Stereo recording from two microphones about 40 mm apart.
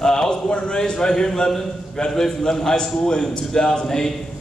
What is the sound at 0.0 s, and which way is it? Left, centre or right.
A man's voice, centre.